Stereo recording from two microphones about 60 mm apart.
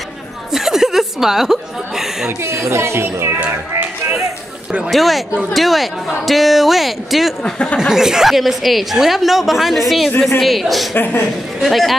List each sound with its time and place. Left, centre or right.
0.5 s chuckle: centre
2.4 s a woman's voice: right
4.8 s a woman's voice: centre
11.0 s a woman's voice: left
11.6 s a woman's voice: centre